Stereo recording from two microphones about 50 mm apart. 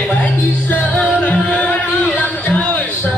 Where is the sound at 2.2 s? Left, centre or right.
Left.